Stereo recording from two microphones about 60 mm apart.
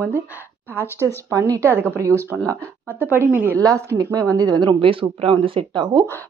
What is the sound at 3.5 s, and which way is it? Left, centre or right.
Speech, right.